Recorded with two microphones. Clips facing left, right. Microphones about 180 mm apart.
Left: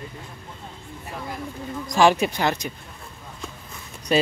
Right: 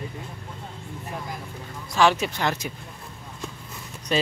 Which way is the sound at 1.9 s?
15° left (ahead or behind).